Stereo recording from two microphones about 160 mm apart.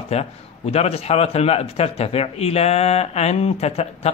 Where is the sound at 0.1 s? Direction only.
40° left (ahead or behind).